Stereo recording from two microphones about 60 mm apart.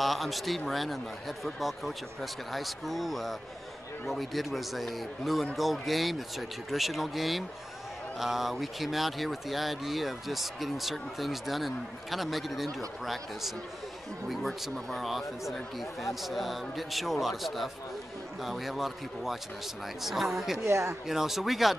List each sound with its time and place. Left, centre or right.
0.0 s speech: centre
20.5 s speech: right
21.1 s speech: centre